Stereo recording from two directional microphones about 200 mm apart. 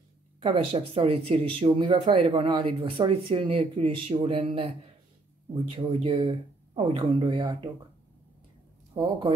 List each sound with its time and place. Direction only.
0.4 s speech: 25° right (ahead or behind)
8.9 s speech: 25° right (ahead or behind)